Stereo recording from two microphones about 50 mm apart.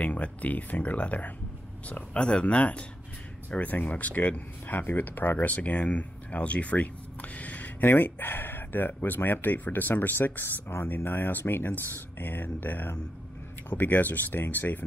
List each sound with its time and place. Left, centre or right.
0.0 s speech: left
3.4 s speech: left